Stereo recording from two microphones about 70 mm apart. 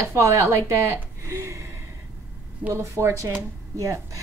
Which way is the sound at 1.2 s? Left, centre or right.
Right.